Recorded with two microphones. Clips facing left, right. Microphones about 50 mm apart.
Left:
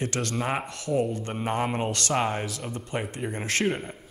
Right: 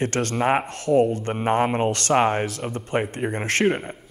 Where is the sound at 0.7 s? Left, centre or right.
Right.